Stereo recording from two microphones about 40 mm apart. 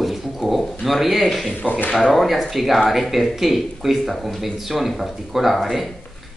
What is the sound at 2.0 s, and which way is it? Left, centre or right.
Speech, centre.